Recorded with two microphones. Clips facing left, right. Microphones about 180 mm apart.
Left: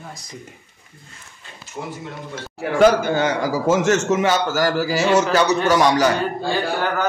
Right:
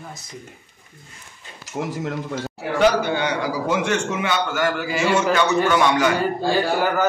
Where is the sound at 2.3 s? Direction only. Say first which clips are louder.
Left 1 dB; 45° left (ahead or behind).